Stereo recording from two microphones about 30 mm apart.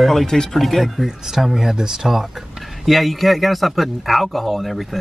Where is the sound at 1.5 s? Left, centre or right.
Centre.